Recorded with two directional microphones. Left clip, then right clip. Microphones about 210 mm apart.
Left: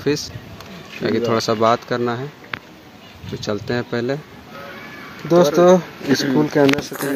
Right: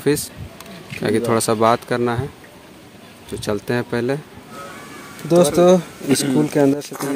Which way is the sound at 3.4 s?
15° right (ahead or behind).